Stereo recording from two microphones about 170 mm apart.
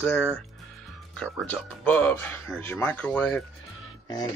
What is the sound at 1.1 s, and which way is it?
Speech, 5° left (ahead or behind).